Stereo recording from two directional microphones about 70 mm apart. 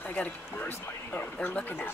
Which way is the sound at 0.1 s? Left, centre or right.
Left.